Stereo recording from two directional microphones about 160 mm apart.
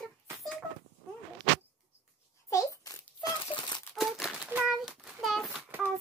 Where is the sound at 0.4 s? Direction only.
Centre (ahead or behind).